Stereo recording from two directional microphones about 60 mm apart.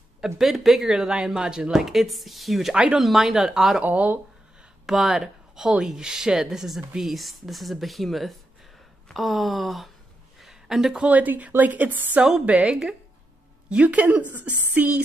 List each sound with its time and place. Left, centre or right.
0.4 s speech: centre
2.7 s a woman's voice: centre
3.0 s speech: centre
3.8 s a woman's voice: right
4.8 s speech: centre
10.4 s a sound: centre
11.0 s a woman's voice: right
12.2 s speech: centre
12.4 s a woman's voice: right